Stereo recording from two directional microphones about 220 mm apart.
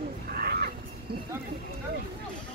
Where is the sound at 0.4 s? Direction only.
45° right (ahead or behind).